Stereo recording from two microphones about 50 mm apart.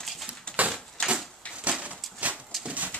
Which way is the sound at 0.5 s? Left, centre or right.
Left.